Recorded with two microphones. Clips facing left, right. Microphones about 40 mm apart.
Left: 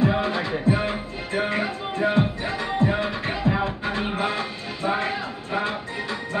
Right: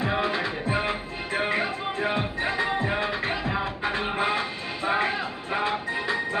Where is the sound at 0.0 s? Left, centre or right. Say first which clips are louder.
Left 3 dB; centre.